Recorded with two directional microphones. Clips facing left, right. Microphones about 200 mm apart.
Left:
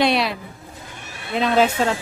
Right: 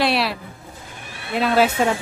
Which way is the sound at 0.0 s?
Centre (ahead or behind).